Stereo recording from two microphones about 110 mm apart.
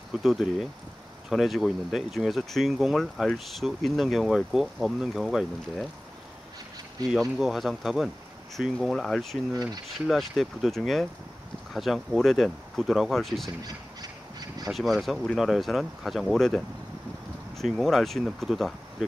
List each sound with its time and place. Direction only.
0.1 s speech: 5° right (ahead or behind)
7.2 s speech: centre (ahead or behind)
13.6 s squawk: 35° right (ahead or behind)
14.7 s speech: centre (ahead or behind)